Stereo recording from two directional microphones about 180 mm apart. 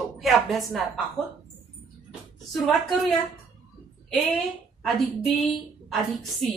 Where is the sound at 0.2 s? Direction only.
Centre (ahead or behind).